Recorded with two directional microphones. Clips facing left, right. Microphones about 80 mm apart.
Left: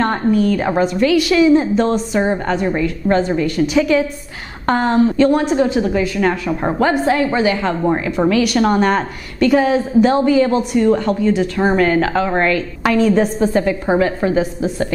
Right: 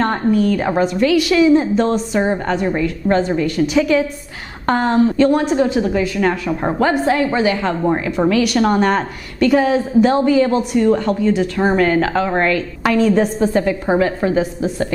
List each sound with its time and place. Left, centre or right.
0.0 s a woman's voice: left